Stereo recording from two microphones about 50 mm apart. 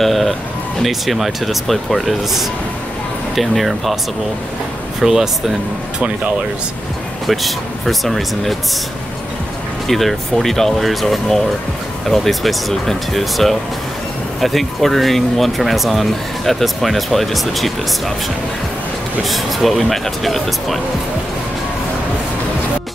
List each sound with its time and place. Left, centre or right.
0.0 s a sound: centre
0.8 s speech: centre
5.0 s speech: centre
5.9 s speech: right
7.2 s speech: centre
9.8 s speech: centre
19.2 s speech: centre